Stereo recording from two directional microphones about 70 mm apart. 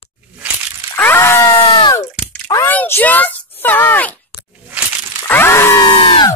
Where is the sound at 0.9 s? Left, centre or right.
Left.